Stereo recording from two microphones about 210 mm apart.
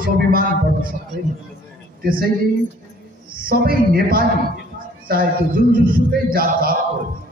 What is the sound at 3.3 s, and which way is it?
A man's voice, 45° right (ahead or behind).